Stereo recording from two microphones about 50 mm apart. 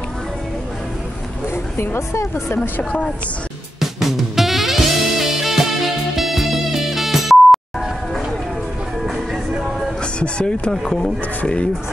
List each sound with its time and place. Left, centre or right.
1.8 s speech: left
3.8 s music: centre
9.0 s music: centre
10.1 s music: centre
10.7 s speech: centre